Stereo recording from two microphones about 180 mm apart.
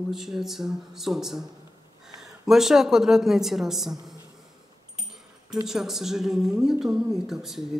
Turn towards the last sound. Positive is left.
turn(degrees=0)  # may be behind; listen again after turning